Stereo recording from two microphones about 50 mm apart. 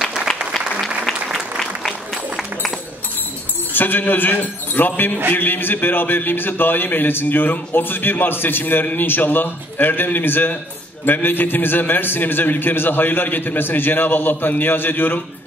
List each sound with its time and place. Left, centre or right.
1.6 s applause: centre
3.7 s a man's voice: left